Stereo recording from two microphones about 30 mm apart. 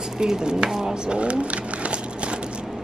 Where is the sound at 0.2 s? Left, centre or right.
Right.